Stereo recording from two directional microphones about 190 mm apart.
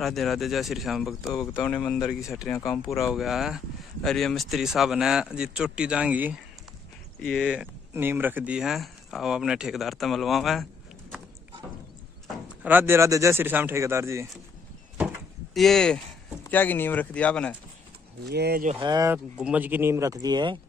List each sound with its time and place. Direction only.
0.0 s speech: centre (ahead or behind)
7.2 s speech: 5° left (ahead or behind)
12.6 s speech: 10° right (ahead or behind)
15.5 s speech: centre (ahead or behind)
18.3 s speech: 55° right (ahead or behind)
18.8 s speech: 20° right (ahead or behind)
19.4 s speech: 10° right (ahead or behind)